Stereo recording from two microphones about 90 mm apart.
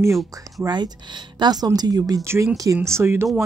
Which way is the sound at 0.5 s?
50° right (ahead or behind).